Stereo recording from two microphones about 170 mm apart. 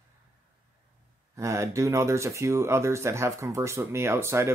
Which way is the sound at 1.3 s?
15° right (ahead or behind).